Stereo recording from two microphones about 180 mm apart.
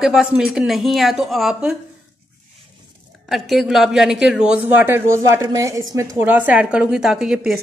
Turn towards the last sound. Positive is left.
turn(degrees=0)  # may be behind; listen again after turning